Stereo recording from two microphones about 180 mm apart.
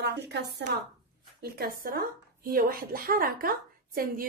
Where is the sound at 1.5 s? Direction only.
55° right (ahead or behind).